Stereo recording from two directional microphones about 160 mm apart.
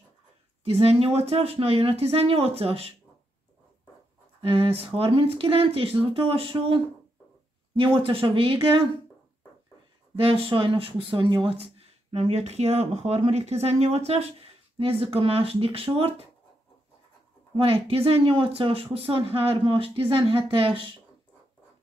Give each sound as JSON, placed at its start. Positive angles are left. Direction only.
{"t": 0.7, "sound": "speech", "side_deg": -40}
{"t": 4.4, "sound": "speech", "side_deg": -35}
{"t": 7.8, "sound": "speech", "side_deg": -30}
{"t": 10.2, "sound": "speech", "side_deg": -35}
{"t": 17.6, "sound": "speech", "side_deg": -35}